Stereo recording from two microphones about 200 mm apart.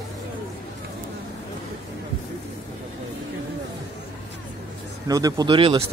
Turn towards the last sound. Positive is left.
turn(degrees=-25)  # may be behind; listen again after turning